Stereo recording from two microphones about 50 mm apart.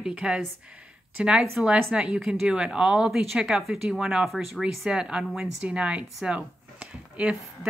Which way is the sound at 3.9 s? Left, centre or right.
Centre.